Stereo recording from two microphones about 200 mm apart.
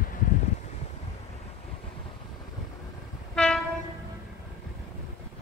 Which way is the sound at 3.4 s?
Centre (ahead or behind).